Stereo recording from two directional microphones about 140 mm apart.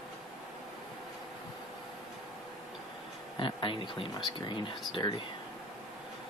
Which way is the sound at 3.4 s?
35° left (ahead or behind).